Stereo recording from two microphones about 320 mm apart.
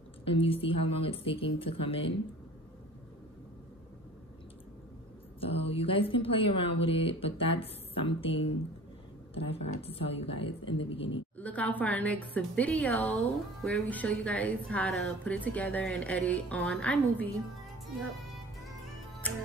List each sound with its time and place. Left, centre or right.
0.2 s a woman's voice: centre
5.4 s a woman's voice: centre
11.3 s a woman's voice: centre